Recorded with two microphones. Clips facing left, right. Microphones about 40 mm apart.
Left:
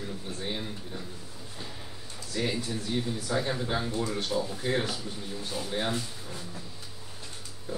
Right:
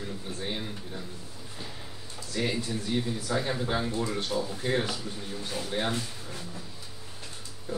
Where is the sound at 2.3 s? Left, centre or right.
Centre.